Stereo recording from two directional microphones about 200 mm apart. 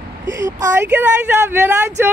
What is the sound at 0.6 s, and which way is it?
Speech, 10° right (ahead or behind).